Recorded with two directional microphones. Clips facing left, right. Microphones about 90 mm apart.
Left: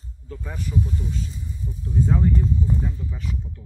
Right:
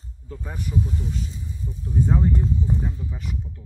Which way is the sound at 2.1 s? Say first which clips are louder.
Left 1 dB; 20° right (ahead or behind).